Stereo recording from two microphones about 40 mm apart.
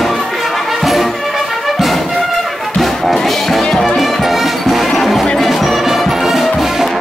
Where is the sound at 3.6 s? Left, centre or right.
Centre.